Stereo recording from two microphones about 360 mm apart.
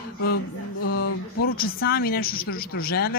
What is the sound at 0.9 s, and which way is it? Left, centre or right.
Speech, left.